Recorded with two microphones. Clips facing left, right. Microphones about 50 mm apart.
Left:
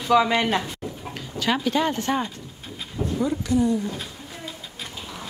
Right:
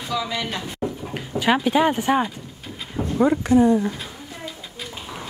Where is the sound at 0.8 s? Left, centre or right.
Right.